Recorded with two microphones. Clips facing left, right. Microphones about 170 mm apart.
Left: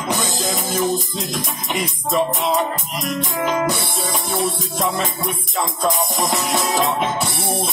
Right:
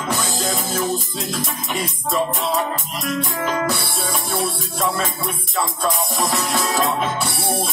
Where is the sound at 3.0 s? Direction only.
20° left (ahead or behind).